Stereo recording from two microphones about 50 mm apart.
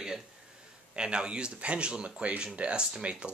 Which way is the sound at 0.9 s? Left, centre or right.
Centre.